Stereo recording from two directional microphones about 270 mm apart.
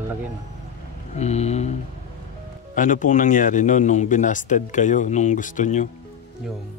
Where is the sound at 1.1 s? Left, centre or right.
Left.